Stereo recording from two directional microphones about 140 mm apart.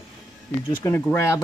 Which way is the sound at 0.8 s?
15° left (ahead or behind).